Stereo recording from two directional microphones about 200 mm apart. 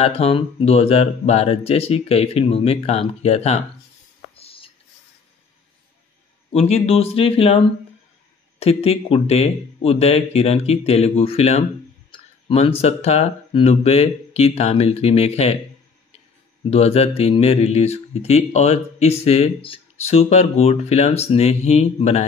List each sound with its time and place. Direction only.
0.0 s speech: 30° left (ahead or behind)
4.4 s writing: 30° left (ahead or behind)
6.5 s speech: 30° left (ahead or behind)
16.7 s speech: 30° left (ahead or behind)